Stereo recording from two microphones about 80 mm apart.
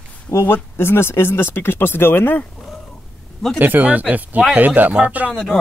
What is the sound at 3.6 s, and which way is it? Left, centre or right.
Speech, right.